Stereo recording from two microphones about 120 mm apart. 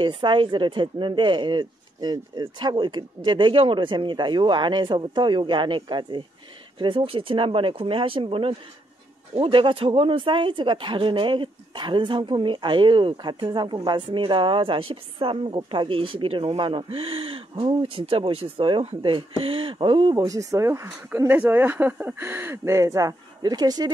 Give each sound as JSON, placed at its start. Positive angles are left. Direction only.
{"t": 0.0, "sound": "speech", "side_deg": -40}
{"t": 20.2, "sound": "speech", "side_deg": -30}